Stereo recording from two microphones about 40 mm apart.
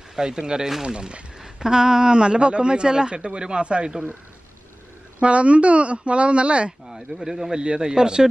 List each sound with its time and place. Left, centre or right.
0.1 s a man's voice: centre
1.4 s a man's voice: centre
5.2 s a man's voice: right
6.9 s a man's voice: centre